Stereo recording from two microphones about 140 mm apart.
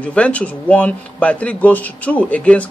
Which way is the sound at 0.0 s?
10° left (ahead or behind).